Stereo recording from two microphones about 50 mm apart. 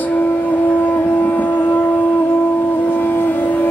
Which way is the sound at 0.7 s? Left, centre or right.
Left.